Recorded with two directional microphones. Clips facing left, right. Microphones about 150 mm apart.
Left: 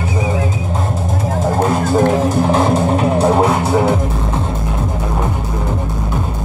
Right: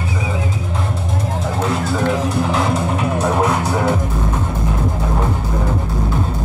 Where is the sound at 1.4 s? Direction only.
45° left (ahead or behind); by 3.9 s 25° left (ahead or behind).